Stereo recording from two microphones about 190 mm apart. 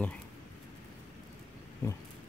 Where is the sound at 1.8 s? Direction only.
10° left (ahead or behind).